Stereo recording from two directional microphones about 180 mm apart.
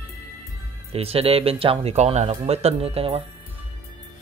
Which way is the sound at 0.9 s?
35° right (ahead or behind).